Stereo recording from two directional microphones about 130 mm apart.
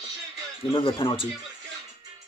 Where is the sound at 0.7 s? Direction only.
40° left (ahead or behind).